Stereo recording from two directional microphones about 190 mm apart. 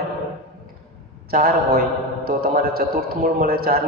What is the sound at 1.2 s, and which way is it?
A man's voice, 50° right (ahead or behind).